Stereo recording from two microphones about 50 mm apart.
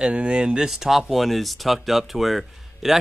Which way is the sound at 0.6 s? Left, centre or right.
Centre.